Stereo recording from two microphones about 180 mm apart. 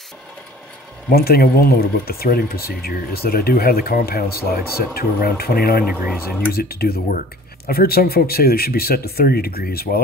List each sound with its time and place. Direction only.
1.1 s speech: 60° left (ahead or behind)